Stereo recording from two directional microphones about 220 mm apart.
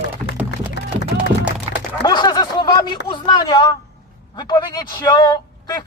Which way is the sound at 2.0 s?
20° left (ahead or behind).